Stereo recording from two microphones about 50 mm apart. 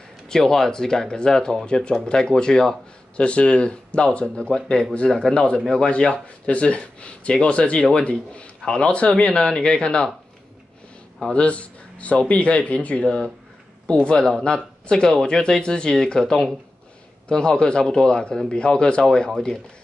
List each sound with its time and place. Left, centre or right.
0.3 s speech: centre
3.3 s speech: left
11.3 s speech: left